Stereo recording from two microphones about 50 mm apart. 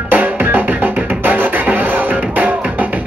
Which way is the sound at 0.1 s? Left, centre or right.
Right.